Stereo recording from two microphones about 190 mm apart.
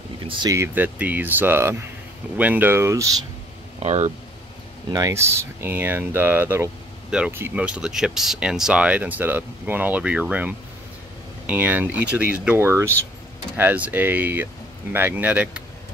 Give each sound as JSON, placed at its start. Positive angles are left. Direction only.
{"t": 0.2, "sound": "speech", "side_deg": -20}
{"t": 3.8, "sound": "speech", "side_deg": -35}
{"t": 4.9, "sound": "speech", "side_deg": -15}